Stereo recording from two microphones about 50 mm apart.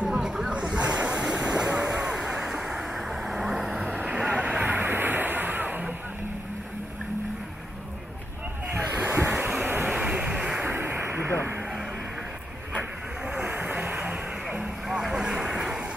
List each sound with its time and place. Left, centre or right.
0.0 s waves: centre
1.9 s vehicle: centre
4.1 s vehicle: right
8.7 s a sound: right
9.8 s vehicle: centre
10.8 s a sound: right
13.5 s vehicle: right
13.9 s vehicle: centre